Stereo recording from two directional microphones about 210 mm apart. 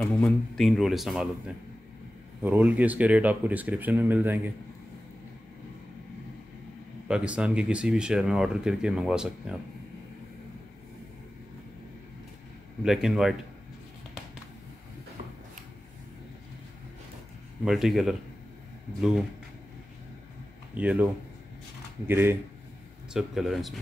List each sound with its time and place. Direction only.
0.0 s speech: 5° left (ahead or behind)
7.1 s speech: 5° right (ahead or behind)
12.8 s speech: centre (ahead or behind)
17.6 s speech: centre (ahead or behind)
20.7 s speech: 5° right (ahead or behind)